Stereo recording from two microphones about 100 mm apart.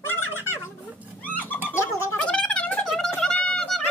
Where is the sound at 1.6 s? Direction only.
25° left (ahead or behind).